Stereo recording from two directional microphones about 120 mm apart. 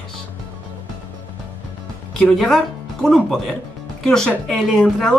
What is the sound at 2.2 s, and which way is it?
Speech, 5° left (ahead or behind).